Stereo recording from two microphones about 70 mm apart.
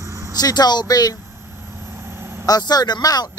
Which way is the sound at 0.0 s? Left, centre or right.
Right.